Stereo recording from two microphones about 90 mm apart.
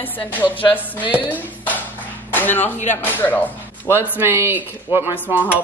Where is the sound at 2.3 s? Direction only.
20° left (ahead or behind).